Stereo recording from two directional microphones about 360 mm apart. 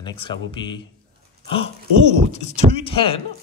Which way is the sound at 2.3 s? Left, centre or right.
Centre.